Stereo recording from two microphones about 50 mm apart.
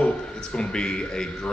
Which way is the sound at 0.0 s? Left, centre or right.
Centre.